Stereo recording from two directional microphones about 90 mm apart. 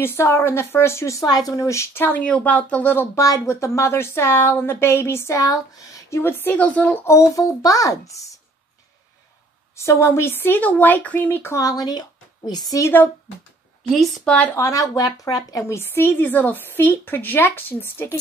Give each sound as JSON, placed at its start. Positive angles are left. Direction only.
{"t": 0.0, "sound": "speech", "side_deg": 30}
{"t": 1.2, "sound": "a child's voice", "side_deg": 45}
{"t": 2.2, "sound": "speech", "side_deg": 15}
{"t": 3.2, "sound": "speech", "side_deg": 35}
{"t": 7.1, "sound": "a child's voice", "side_deg": 35}
{"t": 9.8, "sound": "speech", "side_deg": 30}
{"t": 11.6, "sound": "a woman's voice", "side_deg": 45}
{"t": 12.8, "sound": "speech", "side_deg": 25}
{"t": 13.8, "sound": "a woman's voice", "side_deg": 0}
{"t": 14.3, "sound": "speech", "side_deg": 15}
{"t": 14.6, "sound": "a child's voice", "side_deg": 35}
{"t": 15.6, "sound": "speech", "side_deg": 25}